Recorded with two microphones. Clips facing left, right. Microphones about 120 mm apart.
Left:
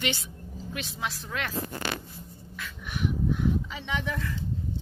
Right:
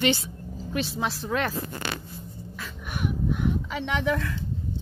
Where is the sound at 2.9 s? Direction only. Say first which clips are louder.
Even; 55° right (ahead or behind); by 4.4 s 70° right (ahead or behind).